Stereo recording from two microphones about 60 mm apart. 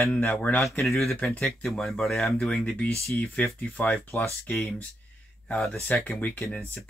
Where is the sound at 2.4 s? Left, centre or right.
Left.